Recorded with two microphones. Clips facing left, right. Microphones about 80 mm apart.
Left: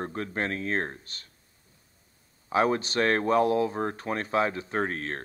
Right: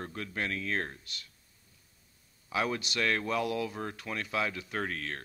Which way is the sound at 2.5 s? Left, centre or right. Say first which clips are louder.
Left 8 dB; left.